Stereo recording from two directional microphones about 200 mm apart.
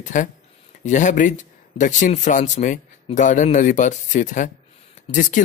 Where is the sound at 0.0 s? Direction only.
40° left (ahead or behind).